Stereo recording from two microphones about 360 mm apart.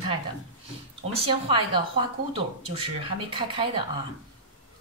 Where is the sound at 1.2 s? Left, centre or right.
Centre.